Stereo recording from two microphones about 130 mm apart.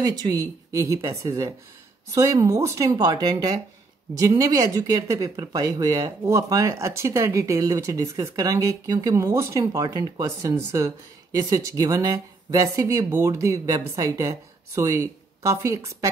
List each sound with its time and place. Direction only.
0.0 s speech: 30° right (ahead or behind)